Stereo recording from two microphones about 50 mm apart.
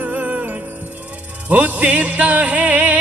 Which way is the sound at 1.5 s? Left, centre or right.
Right.